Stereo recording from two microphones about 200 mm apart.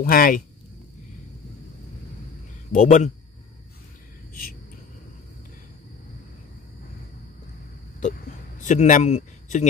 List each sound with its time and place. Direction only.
0.0 s speech: 45° left (ahead or behind)
2.7 s speech: 40° left (ahead or behind)
8.5 s a man's voice: 40° left (ahead or behind)